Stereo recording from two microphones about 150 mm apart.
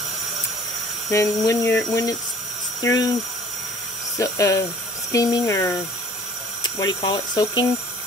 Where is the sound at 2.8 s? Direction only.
25° left (ahead or behind).